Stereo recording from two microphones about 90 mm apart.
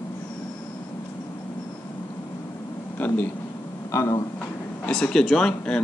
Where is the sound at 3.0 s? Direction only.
20° left (ahead or behind).